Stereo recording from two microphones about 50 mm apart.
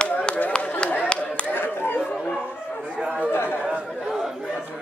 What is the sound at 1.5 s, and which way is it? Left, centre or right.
Chatter, left.